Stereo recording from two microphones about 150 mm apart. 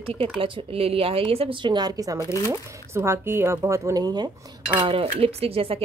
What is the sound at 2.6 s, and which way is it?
Speech, 20° right (ahead or behind).